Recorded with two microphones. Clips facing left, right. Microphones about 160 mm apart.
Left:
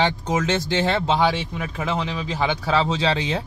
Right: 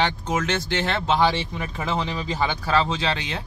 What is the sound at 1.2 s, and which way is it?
Speech, 5° left (ahead or behind).